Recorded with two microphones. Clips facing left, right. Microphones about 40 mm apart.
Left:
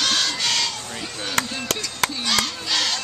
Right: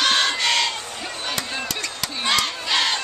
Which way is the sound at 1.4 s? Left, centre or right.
Left.